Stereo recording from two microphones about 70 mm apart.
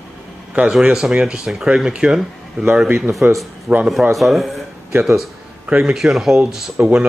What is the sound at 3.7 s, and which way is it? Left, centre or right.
Speech, right.